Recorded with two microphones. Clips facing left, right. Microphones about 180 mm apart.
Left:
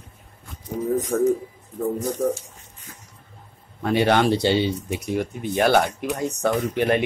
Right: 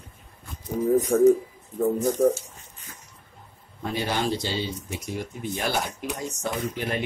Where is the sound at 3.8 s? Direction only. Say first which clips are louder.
Left 8 dB; 70° left (ahead or behind).